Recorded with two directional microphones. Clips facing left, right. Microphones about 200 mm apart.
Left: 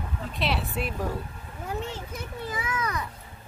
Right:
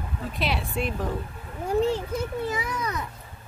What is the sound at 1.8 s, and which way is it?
Speech, 35° right (ahead or behind).